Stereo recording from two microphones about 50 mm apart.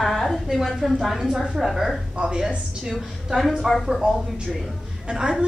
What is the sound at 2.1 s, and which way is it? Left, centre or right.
A woman's voice, centre.